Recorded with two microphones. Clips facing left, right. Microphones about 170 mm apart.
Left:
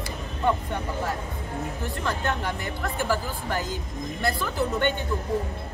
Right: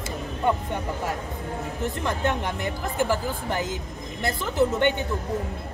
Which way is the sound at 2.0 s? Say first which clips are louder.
Right 1 dB; 20° right (ahead or behind).